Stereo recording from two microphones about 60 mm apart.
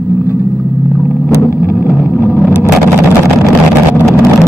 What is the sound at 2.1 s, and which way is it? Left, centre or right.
Vehicle, left.